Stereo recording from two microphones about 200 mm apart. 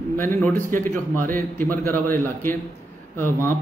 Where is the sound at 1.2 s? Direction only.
45° right (ahead or behind).